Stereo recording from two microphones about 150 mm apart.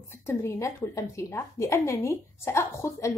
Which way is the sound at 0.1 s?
15° left (ahead or behind).